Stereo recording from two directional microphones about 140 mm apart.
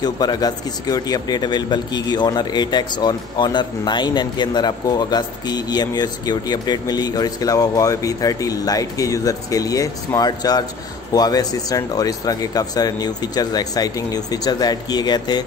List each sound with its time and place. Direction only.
0.0 s a man's voice: 30° left (ahead or behind)